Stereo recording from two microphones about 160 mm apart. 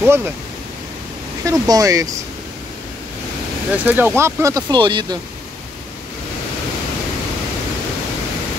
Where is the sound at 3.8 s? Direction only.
10° right (ahead or behind); by 5.0 s 30° right (ahead or behind).